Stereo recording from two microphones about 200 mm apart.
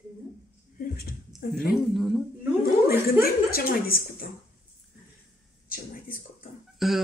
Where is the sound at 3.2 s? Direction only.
50° left (ahead or behind).